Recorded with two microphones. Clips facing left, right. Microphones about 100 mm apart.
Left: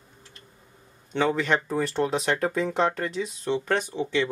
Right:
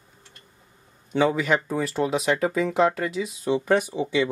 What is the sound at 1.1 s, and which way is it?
Speech, 5° right (ahead or behind).